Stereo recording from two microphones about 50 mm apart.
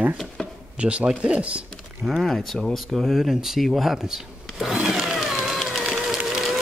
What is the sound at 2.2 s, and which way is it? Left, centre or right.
Speech, centre.